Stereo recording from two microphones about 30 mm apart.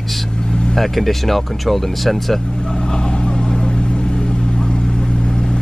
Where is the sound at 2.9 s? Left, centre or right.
Left.